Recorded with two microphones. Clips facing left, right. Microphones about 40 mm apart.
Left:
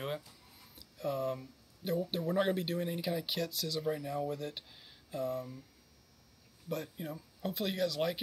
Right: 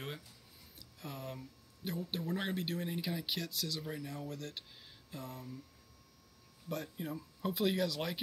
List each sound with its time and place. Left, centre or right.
0.7 s speech: centre
6.7 s speech: centre